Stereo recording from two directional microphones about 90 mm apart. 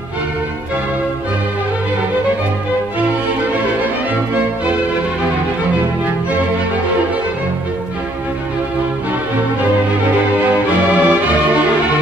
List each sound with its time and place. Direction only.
10.9 s music: 15° right (ahead or behind)